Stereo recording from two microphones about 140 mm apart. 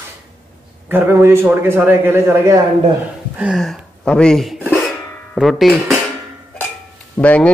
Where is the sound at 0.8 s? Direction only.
15° right (ahead or behind).